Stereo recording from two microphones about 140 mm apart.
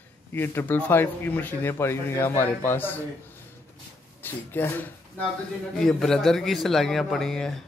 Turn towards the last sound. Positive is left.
turn(degrees=5)  # may be behind; listen again after turning